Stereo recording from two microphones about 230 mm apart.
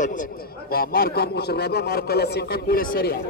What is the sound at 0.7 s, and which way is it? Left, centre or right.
A man's voice, left.